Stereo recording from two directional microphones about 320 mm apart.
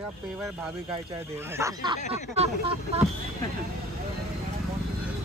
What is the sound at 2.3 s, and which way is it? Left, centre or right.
Speech, centre.